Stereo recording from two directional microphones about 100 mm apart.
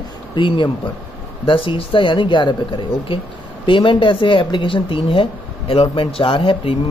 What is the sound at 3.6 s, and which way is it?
Speech, 60° left (ahead or behind).